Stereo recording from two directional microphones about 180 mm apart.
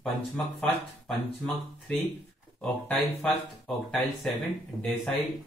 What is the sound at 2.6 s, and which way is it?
Speech, 5° left (ahead or behind).